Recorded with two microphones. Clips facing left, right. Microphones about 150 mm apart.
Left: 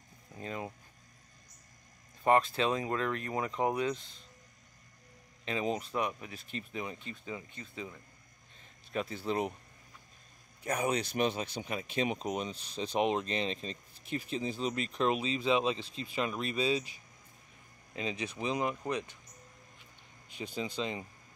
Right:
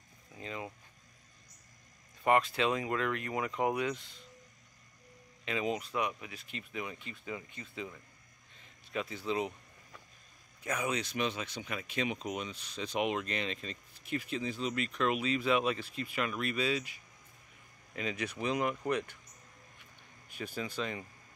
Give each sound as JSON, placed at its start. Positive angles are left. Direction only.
{"t": 0.4, "sound": "speech", "side_deg": 40}
{"t": 2.2, "sound": "speech", "side_deg": 30}
{"t": 5.4, "sound": "speech", "side_deg": 35}
{"t": 8.9, "sound": "speech", "side_deg": 30}
{"t": 10.6, "sound": "speech", "side_deg": 35}
{"t": 17.9, "sound": "speech", "side_deg": 25}
{"t": 20.3, "sound": "speech", "side_deg": 20}